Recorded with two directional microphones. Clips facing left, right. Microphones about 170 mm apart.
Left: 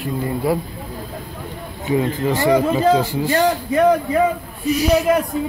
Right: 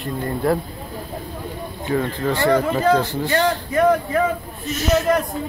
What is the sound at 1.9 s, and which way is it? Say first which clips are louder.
Speech: left 3 dB; 15° left (ahead or behind).